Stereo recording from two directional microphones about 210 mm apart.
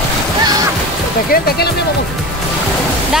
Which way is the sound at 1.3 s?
50° left (ahead or behind).